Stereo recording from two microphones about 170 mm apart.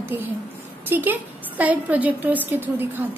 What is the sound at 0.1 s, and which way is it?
A woman's voice, 15° right (ahead or behind).